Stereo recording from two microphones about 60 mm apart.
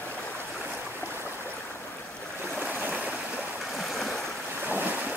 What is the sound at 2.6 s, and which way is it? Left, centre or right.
Stream, right.